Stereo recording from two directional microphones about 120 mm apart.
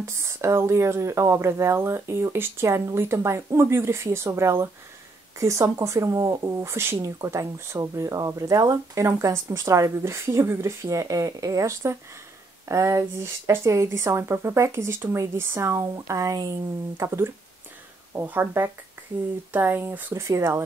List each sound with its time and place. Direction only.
0.0 s speech: 25° right (ahead or behind)